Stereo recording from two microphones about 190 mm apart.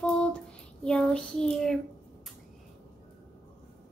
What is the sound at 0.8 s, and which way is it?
Child singing, 5° left (ahead or behind).